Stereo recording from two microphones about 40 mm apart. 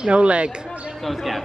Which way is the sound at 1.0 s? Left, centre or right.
Centre.